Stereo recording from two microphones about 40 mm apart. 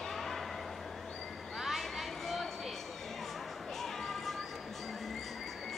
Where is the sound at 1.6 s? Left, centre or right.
Centre.